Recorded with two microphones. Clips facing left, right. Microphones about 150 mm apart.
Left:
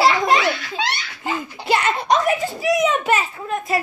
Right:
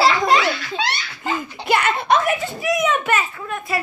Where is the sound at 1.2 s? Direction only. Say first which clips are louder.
Right 1 dB; 10° left (ahead or behind).